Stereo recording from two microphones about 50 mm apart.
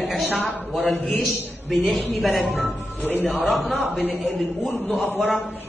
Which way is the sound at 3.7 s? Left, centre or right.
Left.